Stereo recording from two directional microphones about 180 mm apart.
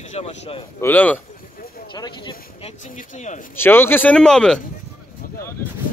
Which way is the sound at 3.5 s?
10° left (ahead or behind).